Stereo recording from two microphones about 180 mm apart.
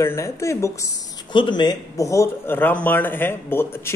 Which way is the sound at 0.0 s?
15° left (ahead or behind).